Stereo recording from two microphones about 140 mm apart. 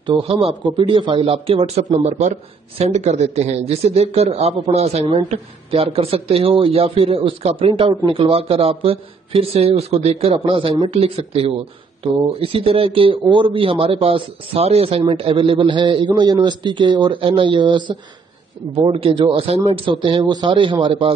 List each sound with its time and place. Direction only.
0.0 s speech: 35° right (ahead or behind)
2.0 s speech: 60° right (ahead or behind); by 21.1 s 35° right (ahead or behind)